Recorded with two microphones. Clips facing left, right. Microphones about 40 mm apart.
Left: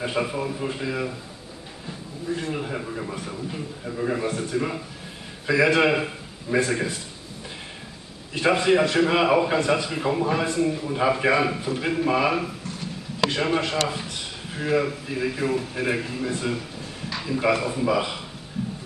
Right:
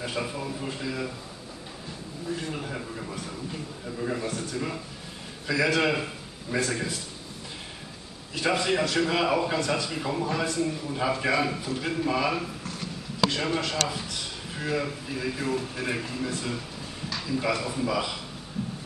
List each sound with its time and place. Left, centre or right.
0.0 s a man's voice: centre
2.3 s a man's voice: centre
8.4 s a man's voice: left
12.6 s a sound: centre
13.3 s a man's voice: left